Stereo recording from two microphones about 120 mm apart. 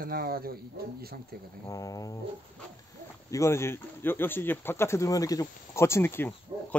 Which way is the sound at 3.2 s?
25° left (ahead or behind).